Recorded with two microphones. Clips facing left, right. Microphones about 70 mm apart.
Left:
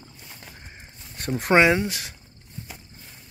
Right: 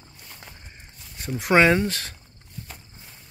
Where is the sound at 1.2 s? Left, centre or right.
Left.